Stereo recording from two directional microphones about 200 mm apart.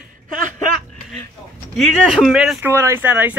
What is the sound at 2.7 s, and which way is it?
Speech, 15° right (ahead or behind).